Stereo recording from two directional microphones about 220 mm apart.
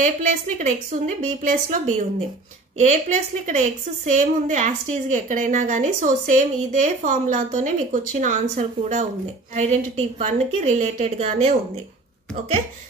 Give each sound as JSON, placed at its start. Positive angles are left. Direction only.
{"t": 0.0, "sound": "a woman's voice", "side_deg": -30}